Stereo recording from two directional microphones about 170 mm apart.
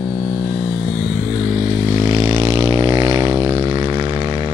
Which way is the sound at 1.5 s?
30° right (ahead or behind).